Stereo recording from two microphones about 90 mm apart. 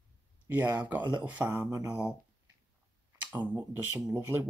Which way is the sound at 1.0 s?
55° right (ahead or behind).